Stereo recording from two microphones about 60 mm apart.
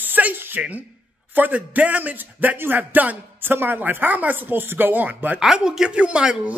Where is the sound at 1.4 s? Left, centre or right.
Right.